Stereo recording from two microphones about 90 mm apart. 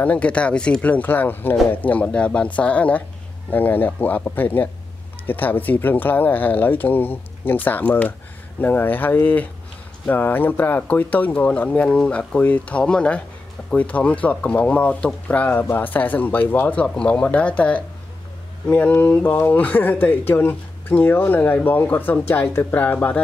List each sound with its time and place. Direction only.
0.0 s speech: 15° left (ahead or behind)